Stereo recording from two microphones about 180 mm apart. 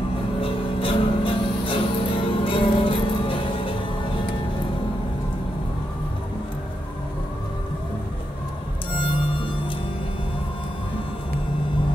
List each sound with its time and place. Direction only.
0.4 s music: 30° left (ahead or behind)